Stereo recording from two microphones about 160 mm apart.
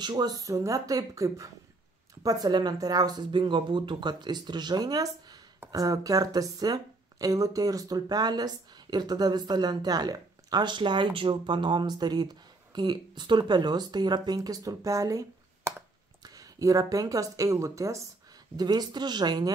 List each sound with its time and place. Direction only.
0.0 s speech: 25° right (ahead or behind)